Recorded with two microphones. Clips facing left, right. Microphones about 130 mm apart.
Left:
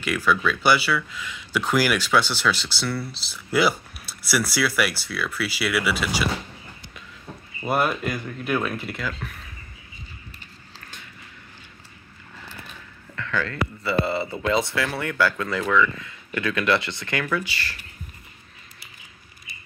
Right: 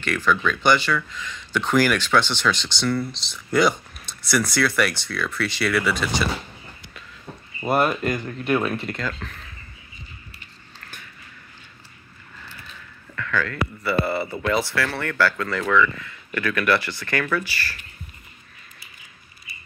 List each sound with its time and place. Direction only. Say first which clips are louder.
0.0 s speech: even; 10° left (ahead or behind)
7.6 s speech: right 2 dB; centre (ahead or behind)
13.1 s speech: right 2 dB; 25° left (ahead or behind)